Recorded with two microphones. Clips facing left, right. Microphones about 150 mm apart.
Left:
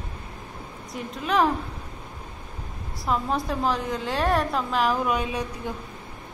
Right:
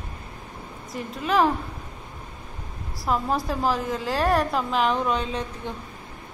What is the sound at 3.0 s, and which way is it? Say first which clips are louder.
A woman's voice: right 1 dB; centre (ahead or behind).